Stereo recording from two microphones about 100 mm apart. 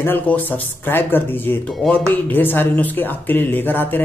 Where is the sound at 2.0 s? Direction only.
20° left (ahead or behind).